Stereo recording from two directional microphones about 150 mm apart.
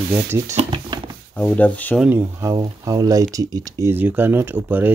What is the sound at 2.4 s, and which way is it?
Speech, 25° right (ahead or behind).